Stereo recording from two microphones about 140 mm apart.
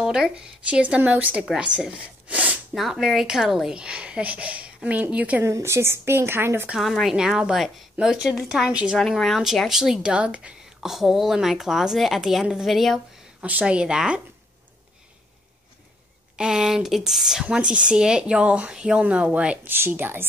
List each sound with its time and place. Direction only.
0.0 s speech: 5° right (ahead or behind)
6.7 s a woman's voice: centre (ahead or behind)
16.3 s speech: 5° right (ahead or behind)